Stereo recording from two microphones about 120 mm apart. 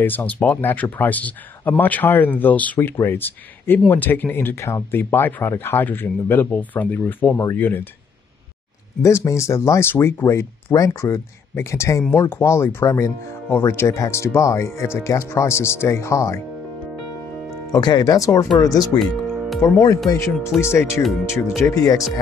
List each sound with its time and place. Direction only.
0.0 s speech: 15° left (ahead or behind)
9.0 s speech: 25° left (ahead or behind)
17.7 s speech: 35° left (ahead or behind)
18.9 s music: centre (ahead or behind)
20.5 s speech: 5° left (ahead or behind)
21.3 s speech: 20° left (ahead or behind)